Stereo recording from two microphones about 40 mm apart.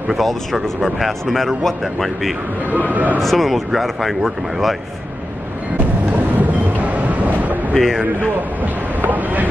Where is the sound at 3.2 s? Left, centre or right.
Centre.